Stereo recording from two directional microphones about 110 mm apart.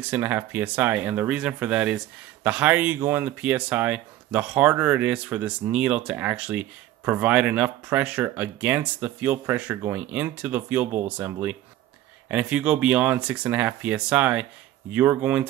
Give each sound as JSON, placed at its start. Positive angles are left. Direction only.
{"t": 0.0, "sound": "speech", "side_deg": -15}